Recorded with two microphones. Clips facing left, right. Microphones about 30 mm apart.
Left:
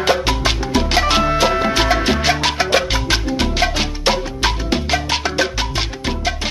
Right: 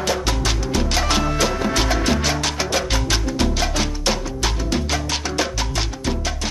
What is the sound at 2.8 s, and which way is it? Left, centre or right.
Music, left.